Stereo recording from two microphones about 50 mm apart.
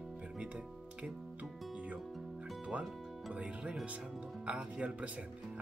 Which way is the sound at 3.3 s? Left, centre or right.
Right.